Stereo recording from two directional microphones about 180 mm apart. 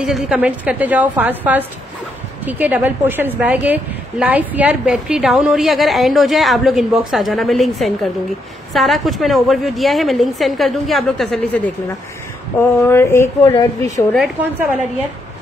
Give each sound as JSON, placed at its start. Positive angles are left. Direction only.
{"t": 0.0, "sound": "a woman's voice", "side_deg": 0}
{"t": 12.8, "sound": "speech", "side_deg": 15}
{"t": 14.1, "sound": "a woman's voice", "side_deg": 0}